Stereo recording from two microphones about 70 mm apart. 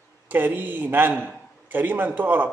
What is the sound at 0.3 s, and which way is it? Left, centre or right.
Speech, right.